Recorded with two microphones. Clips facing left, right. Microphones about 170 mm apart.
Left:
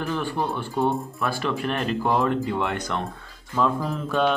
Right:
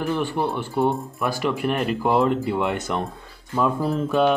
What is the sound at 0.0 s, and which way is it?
Speech, 15° right (ahead or behind).